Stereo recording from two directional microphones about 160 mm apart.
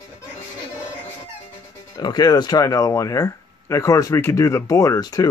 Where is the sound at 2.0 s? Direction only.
25° left (ahead or behind).